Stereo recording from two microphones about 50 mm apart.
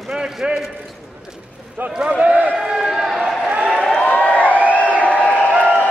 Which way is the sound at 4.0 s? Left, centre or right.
Left.